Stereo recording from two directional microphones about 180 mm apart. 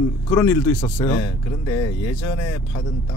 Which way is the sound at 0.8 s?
25° left (ahead or behind).